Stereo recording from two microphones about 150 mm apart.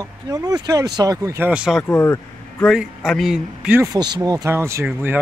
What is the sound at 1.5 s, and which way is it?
Speech, 5° right (ahead or behind).